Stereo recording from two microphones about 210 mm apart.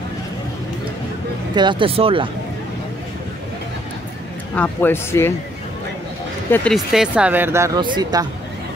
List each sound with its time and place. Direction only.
1.5 s speech: 20° right (ahead or behind)
4.6 s speech: 10° left (ahead or behind)
6.5 s speech: 5° left (ahead or behind); by 8.3 s 20° right (ahead or behind)